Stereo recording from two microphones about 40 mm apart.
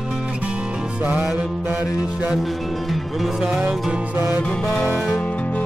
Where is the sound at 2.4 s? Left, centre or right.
Centre.